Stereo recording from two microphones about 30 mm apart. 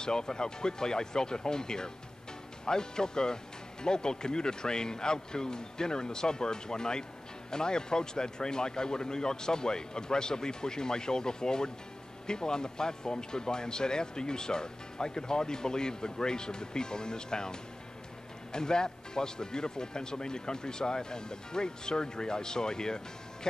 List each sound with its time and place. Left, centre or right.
0.0 s speech: left